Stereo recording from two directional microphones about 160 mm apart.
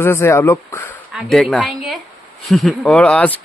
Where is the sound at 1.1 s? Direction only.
5° left (ahead or behind).